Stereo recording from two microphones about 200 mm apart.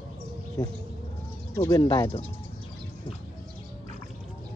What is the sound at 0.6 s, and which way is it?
Speech, 20° left (ahead or behind).